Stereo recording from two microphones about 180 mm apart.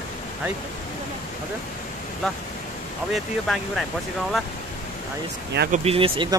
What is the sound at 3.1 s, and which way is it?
Speech, centre (ahead or behind).